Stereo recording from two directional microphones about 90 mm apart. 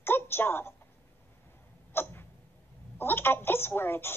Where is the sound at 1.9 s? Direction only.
25° left (ahead or behind).